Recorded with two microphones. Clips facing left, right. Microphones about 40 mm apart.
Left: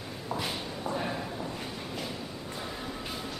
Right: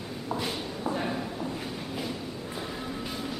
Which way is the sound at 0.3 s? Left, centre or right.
Centre.